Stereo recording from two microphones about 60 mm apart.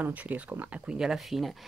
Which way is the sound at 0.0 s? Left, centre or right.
Right.